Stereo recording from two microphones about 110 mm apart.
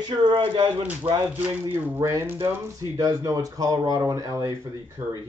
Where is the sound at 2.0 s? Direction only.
25° right (ahead or behind).